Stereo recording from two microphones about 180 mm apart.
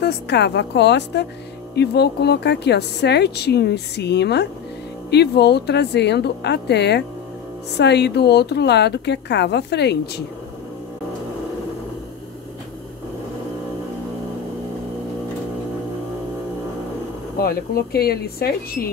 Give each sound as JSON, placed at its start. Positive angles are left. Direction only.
{"t": 0.0, "sound": "a woman's voice", "side_deg": 65}
{"t": 17.4, "sound": "speech", "side_deg": 55}